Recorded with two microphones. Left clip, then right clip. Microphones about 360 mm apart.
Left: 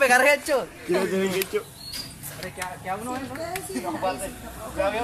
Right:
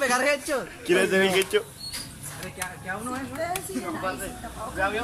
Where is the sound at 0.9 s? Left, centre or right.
Right.